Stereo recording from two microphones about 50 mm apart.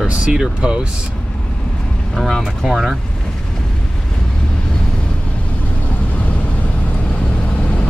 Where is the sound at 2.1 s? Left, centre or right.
Centre.